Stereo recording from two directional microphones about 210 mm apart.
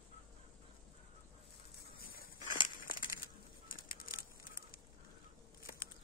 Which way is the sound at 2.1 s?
45° left (ahead or behind).